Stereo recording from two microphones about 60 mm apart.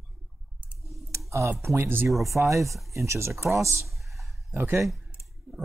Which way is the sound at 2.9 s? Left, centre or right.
Right.